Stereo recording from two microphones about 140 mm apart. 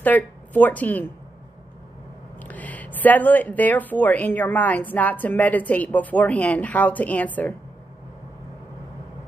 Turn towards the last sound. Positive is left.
turn(degrees=10)  # may be behind; listen again after turning